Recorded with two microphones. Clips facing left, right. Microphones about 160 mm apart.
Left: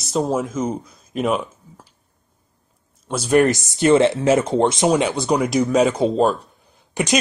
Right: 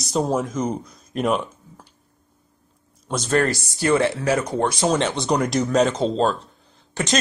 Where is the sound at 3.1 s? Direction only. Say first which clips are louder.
Left 5 dB; 10° left (ahead or behind).